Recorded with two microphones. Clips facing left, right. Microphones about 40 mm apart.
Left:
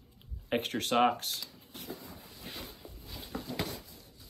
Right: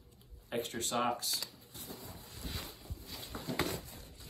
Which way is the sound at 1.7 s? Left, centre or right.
Left.